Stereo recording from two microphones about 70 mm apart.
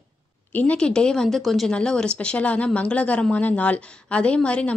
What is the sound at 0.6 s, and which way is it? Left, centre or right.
Speech, centre.